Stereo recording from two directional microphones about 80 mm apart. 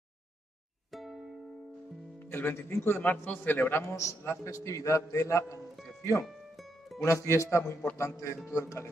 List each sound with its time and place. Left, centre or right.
0.9 s music: centre
2.1 s speech: left
3.9 s a man's voice: left
6.2 s music: centre
7.1 s a man's voice: left